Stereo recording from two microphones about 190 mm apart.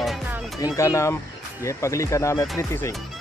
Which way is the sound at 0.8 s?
15° left (ahead or behind).